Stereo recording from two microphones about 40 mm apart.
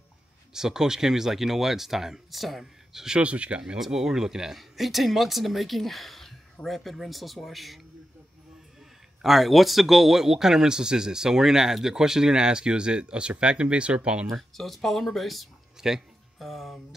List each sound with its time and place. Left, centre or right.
0.5 s speech: centre
3.2 s speech: right
3.6 s speech: centre
9.2 s speech: centre; by 14.2 s right
14.6 s speech: centre
15.8 s speech: centre
16.3 s speech: centre